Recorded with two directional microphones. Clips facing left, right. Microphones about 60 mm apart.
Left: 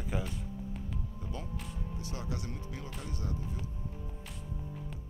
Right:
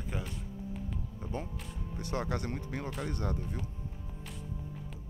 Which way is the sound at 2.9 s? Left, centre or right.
Right.